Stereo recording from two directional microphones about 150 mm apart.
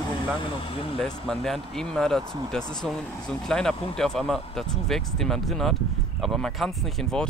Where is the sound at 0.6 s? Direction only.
35° left (ahead or behind).